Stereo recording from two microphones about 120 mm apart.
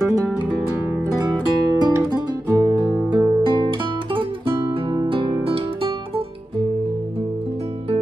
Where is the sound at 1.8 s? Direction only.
30° right (ahead or behind); by 6.2 s 50° right (ahead or behind).